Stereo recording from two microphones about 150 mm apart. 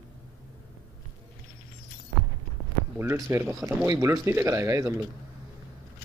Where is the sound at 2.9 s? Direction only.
15° right (ahead or behind).